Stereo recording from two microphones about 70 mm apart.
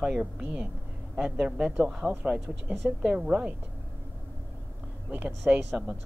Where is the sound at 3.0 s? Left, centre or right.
Centre.